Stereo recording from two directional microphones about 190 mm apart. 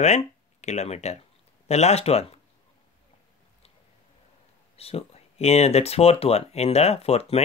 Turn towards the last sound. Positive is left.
turn(degrees=35)  # may be behind; listen again after turning